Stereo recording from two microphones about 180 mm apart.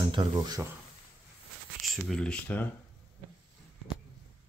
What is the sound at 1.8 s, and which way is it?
Speech, centre (ahead or behind).